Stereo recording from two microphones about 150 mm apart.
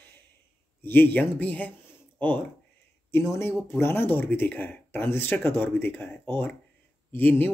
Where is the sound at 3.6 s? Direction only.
15° left (ahead or behind).